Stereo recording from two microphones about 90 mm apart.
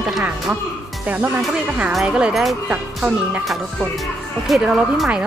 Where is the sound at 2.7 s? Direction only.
15° right (ahead or behind).